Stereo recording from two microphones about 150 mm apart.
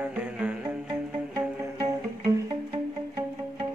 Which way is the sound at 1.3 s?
20° right (ahead or behind).